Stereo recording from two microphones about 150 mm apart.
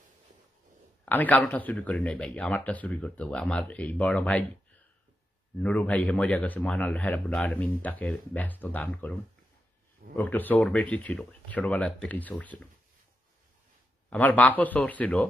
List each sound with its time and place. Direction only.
1.0 s a man's voice: 10° left (ahead or behind)
5.6 s a man's voice: 10° left (ahead or behind)
10.1 s a man's voice: 10° left (ahead or behind)
14.1 s a man's voice: 10° left (ahead or behind)